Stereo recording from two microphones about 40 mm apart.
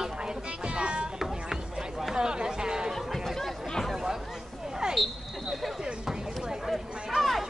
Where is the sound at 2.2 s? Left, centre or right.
Centre.